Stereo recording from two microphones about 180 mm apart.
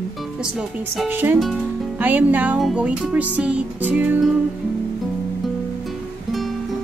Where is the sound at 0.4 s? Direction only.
5° right (ahead or behind).